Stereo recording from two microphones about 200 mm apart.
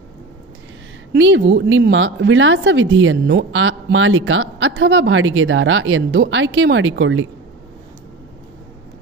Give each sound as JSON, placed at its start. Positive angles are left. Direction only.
{"t": 1.1, "sound": "a woman's voice", "side_deg": -70}